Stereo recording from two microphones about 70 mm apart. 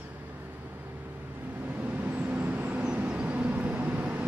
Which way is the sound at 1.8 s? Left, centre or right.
Right.